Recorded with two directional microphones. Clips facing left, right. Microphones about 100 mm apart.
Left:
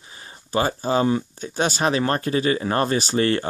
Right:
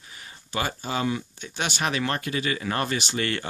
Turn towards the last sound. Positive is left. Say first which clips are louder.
# left 8 dB
turn(degrees=35)  # may be behind; listen again after turning